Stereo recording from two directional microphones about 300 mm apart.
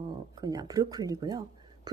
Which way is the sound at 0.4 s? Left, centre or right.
Centre.